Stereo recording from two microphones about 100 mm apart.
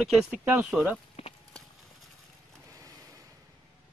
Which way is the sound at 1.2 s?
80° left.